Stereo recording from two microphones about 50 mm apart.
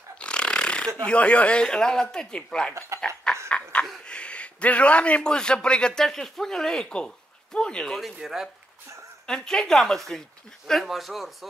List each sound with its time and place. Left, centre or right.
0.2 s speech: left
3.0 s a sound: centre
4.0 s a man's voice: left
7.8 s speech: centre
9.2 s a woman's voice: centre